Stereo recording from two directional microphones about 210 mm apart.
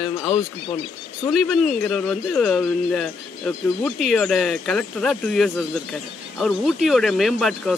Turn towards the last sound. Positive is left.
turn(degrees=0)  # may be behind; listen again after turning